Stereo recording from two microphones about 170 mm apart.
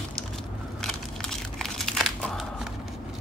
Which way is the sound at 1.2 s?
5° left (ahead or behind).